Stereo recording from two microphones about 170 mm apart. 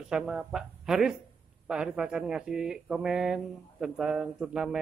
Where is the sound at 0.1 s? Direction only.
5° right (ahead or behind).